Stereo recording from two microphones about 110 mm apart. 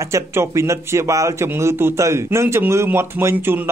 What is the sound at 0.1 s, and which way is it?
A man's voice, 25° right (ahead or behind).